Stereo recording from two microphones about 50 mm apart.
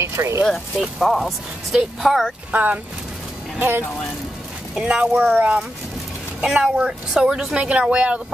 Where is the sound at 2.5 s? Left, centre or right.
Right.